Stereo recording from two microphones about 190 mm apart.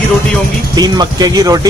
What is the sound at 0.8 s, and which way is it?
Speech, 20° right (ahead or behind).